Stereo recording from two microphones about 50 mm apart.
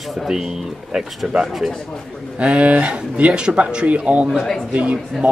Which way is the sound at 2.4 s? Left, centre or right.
Right.